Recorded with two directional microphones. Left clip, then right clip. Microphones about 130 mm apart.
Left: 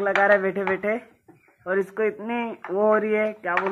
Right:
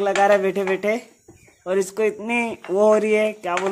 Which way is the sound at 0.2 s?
55° right (ahead or behind).